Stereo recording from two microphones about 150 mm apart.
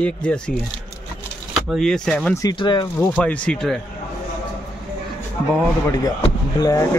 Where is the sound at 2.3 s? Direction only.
20° left (ahead or behind).